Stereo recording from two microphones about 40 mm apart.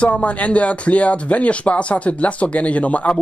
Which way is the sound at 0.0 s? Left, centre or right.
Left.